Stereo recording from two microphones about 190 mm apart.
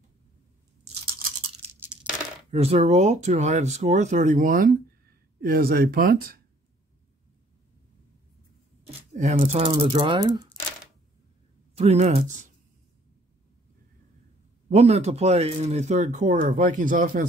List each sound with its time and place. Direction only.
2.5 s speech: 35° right (ahead or behind); by 6.4 s 50° right (ahead or behind)
8.8 s speech: 40° right (ahead or behind); by 10.4 s 25° right (ahead or behind)
11.7 s speech: 35° right (ahead or behind)
14.7 s speech: 35° right (ahead or behind)